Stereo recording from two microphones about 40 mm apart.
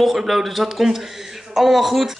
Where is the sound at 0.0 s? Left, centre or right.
Centre.